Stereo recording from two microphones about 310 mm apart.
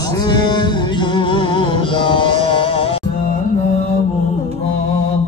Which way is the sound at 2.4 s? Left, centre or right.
Centre.